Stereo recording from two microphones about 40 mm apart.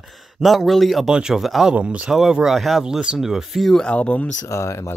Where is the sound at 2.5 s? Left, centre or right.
Centre.